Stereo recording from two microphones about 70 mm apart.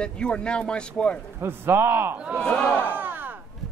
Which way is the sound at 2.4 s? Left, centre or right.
Centre.